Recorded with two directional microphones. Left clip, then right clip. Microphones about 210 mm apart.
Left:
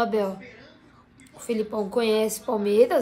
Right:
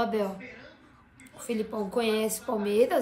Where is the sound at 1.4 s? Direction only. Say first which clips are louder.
Left 5 dB; 15° left (ahead or behind).